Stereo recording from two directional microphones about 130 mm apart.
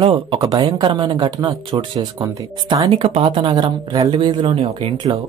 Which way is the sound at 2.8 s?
45° right (ahead or behind).